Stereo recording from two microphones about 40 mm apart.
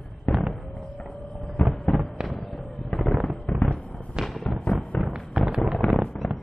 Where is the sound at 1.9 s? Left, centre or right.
Left.